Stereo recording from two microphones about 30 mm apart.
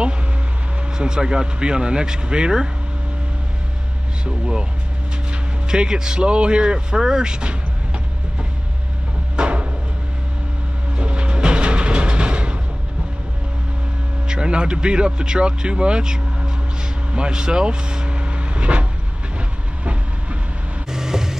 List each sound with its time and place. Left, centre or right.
0.9 s speech: right
4.2 s speech: right
5.7 s speech: right
9.4 s a sound: right
11.0 s train: right
14.2 s speech: right
17.1 s vehicle: right
20.9 s vehicle: centre